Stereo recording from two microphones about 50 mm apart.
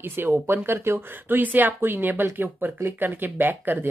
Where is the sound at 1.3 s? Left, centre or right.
Right.